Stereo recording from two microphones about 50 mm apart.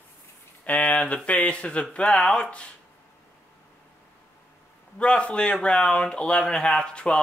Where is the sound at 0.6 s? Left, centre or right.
Left; by 2.5 s centre.